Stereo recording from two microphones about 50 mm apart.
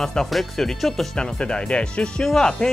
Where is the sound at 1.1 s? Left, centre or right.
Centre.